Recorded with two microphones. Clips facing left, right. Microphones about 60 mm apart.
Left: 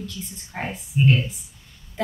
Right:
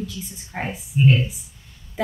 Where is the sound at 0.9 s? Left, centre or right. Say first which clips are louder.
Right 2 dB; centre.